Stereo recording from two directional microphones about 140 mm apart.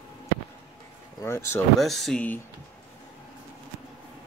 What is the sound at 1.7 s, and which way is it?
Speech, centre (ahead or behind).